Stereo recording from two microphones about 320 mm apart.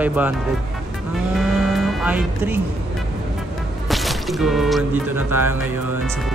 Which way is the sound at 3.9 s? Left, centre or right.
Centre.